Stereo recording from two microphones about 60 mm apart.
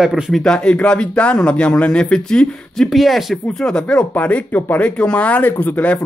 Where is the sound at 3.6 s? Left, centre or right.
Centre.